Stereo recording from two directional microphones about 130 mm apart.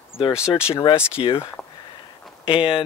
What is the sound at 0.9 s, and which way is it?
Speech, 40° left (ahead or behind).